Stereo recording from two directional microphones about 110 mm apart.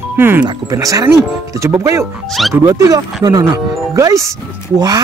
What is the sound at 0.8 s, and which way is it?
Speech, 30° right (ahead or behind).